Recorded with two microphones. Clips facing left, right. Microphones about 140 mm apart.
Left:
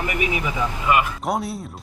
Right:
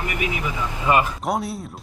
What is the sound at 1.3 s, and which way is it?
Speech, centre (ahead or behind).